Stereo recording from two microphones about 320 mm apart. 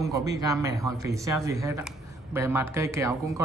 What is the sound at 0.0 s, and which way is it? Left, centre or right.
Speech, centre.